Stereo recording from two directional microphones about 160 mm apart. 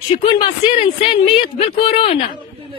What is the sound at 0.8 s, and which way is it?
Speech, 40° left (ahead or behind).